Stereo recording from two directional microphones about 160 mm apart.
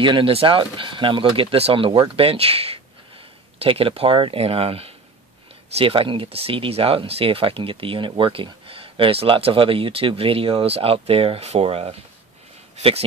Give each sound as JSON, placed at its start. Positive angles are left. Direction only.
{"t": 0.0, "sound": "speech", "side_deg": -35}